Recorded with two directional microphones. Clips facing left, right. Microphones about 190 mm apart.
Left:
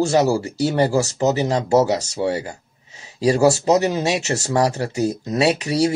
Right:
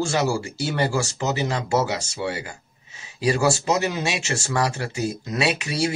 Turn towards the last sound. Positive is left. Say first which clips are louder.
# left 6 dB
turn(degrees=35)  # may be behind; listen again after turning